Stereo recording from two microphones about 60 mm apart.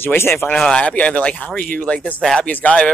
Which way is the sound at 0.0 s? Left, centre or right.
Left.